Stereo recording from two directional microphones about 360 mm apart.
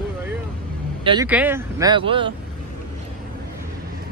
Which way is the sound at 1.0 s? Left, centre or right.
Centre.